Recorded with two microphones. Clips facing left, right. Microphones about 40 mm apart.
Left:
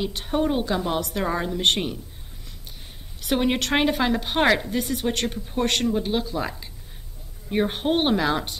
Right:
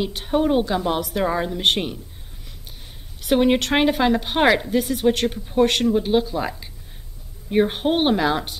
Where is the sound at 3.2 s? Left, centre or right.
Centre.